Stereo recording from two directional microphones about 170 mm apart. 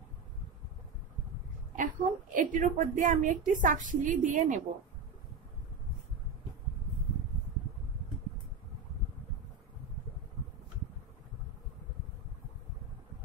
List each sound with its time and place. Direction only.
1.8 s a woman's voice: 50° right (ahead or behind)